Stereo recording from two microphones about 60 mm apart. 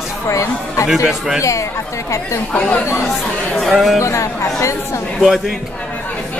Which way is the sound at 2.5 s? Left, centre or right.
Centre.